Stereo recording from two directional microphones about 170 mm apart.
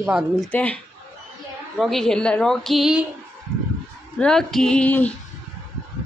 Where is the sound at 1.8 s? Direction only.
Centre (ahead or behind).